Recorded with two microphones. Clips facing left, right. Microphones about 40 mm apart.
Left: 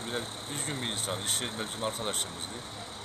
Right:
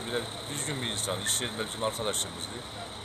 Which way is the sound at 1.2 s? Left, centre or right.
Centre.